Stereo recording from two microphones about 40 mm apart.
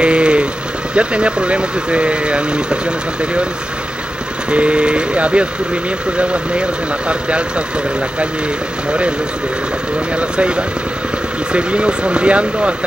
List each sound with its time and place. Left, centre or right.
0.0 s vehicle: right
0.9 s speech: right
4.5 s speech: right
10.1 s speech: right